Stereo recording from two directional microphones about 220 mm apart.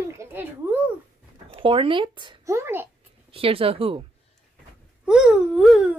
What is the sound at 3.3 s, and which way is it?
Speech, 25° right (ahead or behind).